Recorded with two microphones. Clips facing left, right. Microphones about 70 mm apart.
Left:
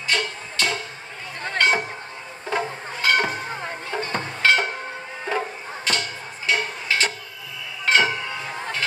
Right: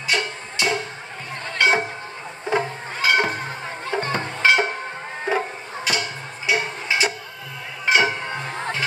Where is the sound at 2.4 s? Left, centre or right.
Centre.